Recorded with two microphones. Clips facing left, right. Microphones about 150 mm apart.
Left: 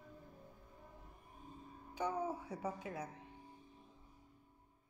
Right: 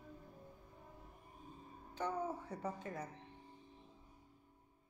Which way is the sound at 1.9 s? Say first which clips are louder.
Left 1 dB; 10° left (ahead or behind).